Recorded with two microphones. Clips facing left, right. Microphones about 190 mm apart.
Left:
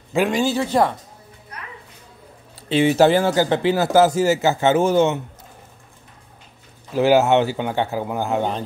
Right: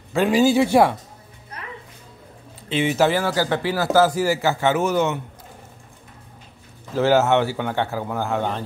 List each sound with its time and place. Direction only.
0.3 s speech: 10° right (ahead or behind)
1.5 s music: 30° right (ahead or behind)
2.7 s speech: 35° left (ahead or behind)
6.9 s speech: 15° left (ahead or behind)